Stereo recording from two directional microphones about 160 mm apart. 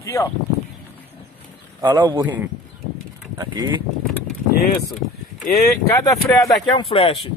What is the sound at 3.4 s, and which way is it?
Speech, 25° right (ahead or behind).